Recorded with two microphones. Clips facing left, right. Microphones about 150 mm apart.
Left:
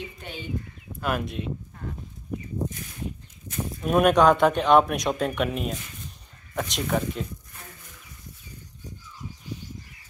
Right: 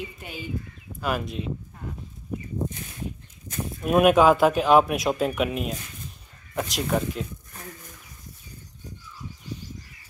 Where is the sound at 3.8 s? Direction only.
5° right (ahead or behind).